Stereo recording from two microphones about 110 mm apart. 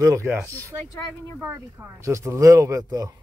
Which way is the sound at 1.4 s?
25° right (ahead or behind).